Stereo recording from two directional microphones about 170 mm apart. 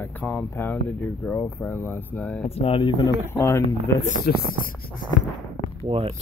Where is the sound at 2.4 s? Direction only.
35° left (ahead or behind).